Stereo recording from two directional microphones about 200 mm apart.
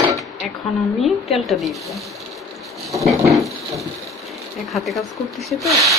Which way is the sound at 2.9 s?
Centre (ahead or behind).